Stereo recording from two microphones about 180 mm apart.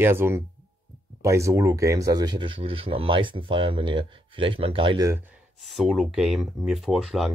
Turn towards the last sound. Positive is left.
turn(degrees=0)  # may be behind; listen again after turning